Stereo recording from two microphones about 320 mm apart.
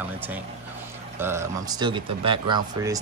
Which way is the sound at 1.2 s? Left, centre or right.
Centre.